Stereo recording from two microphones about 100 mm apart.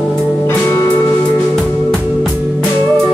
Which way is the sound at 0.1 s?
Centre (ahead or behind).